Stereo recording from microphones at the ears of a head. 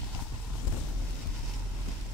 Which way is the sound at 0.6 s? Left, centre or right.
Left.